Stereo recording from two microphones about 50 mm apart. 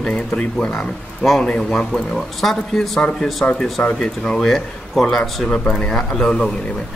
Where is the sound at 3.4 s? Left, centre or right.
Centre.